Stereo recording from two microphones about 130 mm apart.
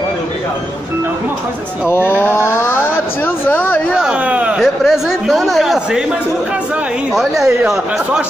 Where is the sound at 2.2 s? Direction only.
20° left (ahead or behind).